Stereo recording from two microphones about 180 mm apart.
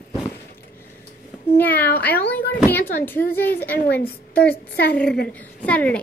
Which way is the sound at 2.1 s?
60° left (ahead or behind).